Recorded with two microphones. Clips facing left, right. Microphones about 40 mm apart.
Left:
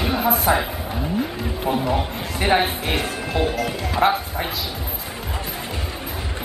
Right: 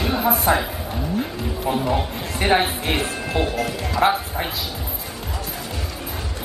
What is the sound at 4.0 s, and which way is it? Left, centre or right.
Music, centre.